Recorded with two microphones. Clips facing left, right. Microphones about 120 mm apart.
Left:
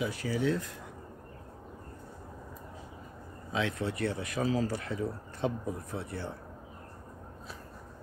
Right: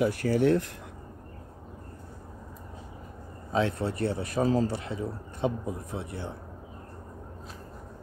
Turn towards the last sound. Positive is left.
turn(degrees=-20)  # may be behind; listen again after turning